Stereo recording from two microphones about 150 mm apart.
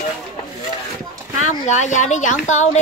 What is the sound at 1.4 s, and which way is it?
Speech, 50° left (ahead or behind).